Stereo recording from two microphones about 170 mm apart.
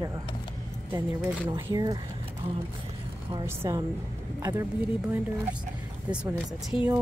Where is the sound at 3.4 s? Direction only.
15° right (ahead or behind).